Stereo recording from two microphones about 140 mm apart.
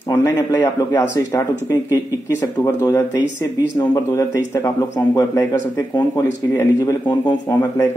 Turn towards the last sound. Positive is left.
turn(degrees=20)  # may be behind; listen again after turning